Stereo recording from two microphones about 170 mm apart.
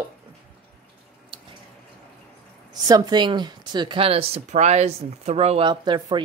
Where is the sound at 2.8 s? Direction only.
25° right (ahead or behind).